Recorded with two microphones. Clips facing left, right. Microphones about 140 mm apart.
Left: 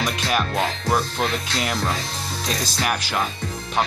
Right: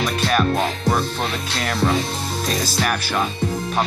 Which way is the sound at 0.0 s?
15° left (ahead or behind).